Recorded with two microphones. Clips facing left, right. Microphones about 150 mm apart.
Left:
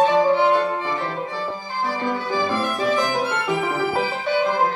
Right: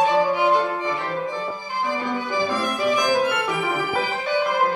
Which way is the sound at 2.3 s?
15° right (ahead or behind).